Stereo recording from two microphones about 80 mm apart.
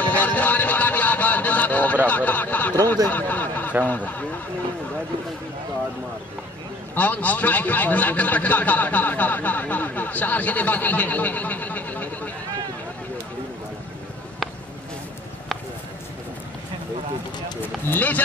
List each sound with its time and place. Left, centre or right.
0.0 s music: left
2.0 s a man's voice: left
7.0 s a man's voice: left
17.6 s a man's voice: left